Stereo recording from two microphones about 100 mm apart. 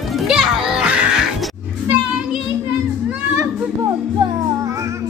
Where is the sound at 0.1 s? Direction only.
5° right (ahead or behind).